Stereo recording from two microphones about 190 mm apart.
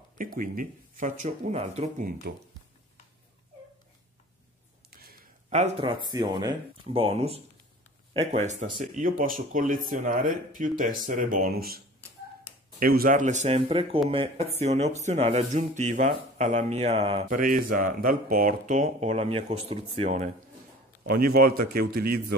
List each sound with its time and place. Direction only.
0.4 s speech: 45° right (ahead or behind)
4.9 s a sound: 50° right (ahead or behind)
5.5 s speech: 35° right (ahead or behind)
17.3 s speech: 45° right (ahead or behind)
21.0 s speech: 55° right (ahead or behind)